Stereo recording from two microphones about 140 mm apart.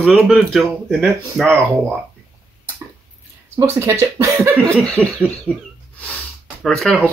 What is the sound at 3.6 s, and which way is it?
Speech, 20° right (ahead or behind).